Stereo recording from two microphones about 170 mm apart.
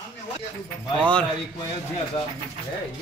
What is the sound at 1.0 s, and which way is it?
Speech, 5° left (ahead or behind).